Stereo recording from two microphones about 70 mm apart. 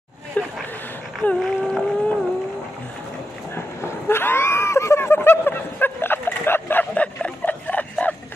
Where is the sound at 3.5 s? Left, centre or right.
Left.